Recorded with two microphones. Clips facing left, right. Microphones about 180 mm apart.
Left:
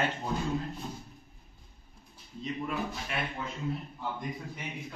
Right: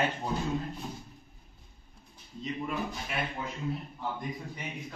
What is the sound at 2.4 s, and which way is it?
Speech, centre (ahead or behind).